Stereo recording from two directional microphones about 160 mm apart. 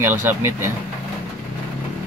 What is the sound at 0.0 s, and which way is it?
Speech, 15° right (ahead or behind).